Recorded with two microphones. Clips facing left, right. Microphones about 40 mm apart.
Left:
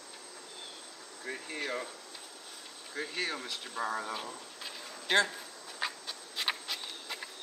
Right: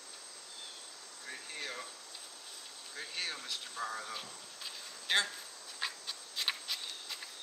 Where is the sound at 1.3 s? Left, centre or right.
Left.